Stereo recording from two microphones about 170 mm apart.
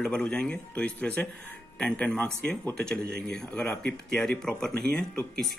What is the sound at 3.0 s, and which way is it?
Speech, 65° right (ahead or behind).